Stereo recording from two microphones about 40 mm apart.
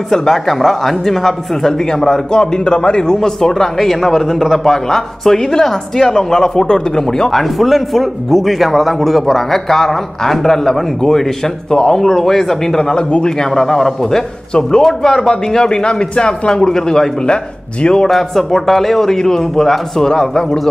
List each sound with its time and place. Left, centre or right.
0.1 s speech: centre
18.0 s speech: centre